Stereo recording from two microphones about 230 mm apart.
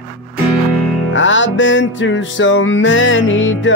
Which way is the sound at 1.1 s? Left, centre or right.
Left.